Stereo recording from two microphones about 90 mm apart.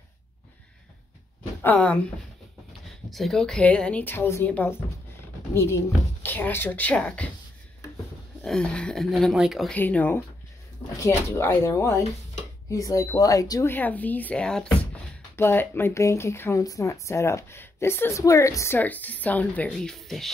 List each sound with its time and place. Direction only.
1.6 s a woman's voice: 20° left (ahead or behind)
3.1 s a woman's voice: centre (ahead or behind); by 4.5 s 25° left (ahead or behind)
5.5 s a woman's voice: 30° left (ahead or behind); by 7.2 s 10° left (ahead or behind)
8.5 s speech: 10° left (ahead or behind)
9.8 s a woman's voice: 20° left (ahead or behind)
11.0 s speech: 30° left (ahead or behind)
13.7 s a woman's voice: 20° left (ahead or behind)
15.3 s a woman's voice: 25° left (ahead or behind)
18.8 s a woman's voice: 20° left (ahead or behind)
19.7 s speech: 5° left (ahead or behind)